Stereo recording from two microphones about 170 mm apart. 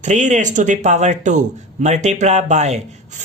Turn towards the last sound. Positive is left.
turn(degrees=-45)  # may be behind; listen again after turning